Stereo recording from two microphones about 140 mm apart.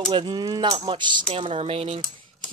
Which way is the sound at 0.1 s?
35° right (ahead or behind).